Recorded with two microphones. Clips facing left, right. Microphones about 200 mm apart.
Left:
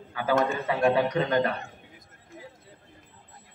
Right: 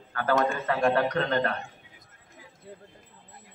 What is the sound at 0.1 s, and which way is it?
A man's voice, 10° left (ahead or behind).